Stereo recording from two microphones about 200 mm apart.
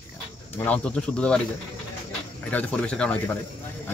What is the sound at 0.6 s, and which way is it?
Speech, 5° left (ahead or behind).